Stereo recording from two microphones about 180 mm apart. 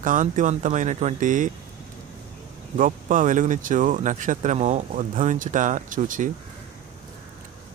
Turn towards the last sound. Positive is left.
turn(degrees=-45)  # may be behind; listen again after turning